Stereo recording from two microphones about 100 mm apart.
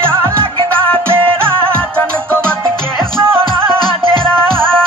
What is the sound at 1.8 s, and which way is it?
Music, 10° left (ahead or behind).